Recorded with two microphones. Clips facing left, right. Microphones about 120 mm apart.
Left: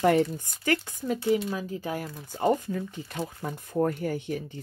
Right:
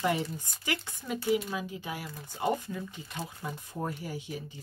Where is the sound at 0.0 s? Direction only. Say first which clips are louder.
Left 8 dB; 55° left (ahead or behind).